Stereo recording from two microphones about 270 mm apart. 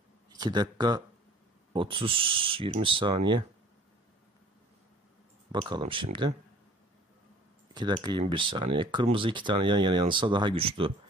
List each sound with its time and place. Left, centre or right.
0.3 s speech: centre
5.5 s speech: centre
7.7 s speech: centre